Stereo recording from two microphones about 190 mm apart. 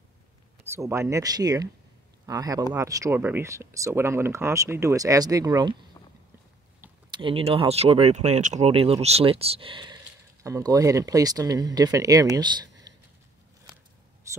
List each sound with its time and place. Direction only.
0.7 s speech: 15° right (ahead or behind)
7.1 s speech: 25° right (ahead or behind)
14.3 s a sound: 15° right (ahead or behind)